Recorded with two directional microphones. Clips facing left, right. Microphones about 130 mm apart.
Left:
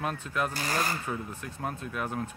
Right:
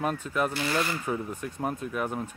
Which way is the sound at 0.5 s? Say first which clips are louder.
Right 3 dB; 40° left (ahead or behind).